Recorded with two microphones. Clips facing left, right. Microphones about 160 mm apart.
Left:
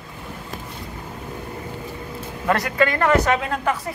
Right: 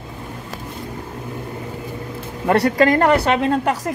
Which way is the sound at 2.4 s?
35° right (ahead or behind).